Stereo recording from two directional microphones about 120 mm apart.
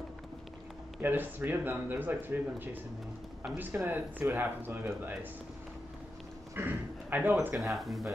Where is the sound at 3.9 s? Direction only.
15° right (ahead or behind).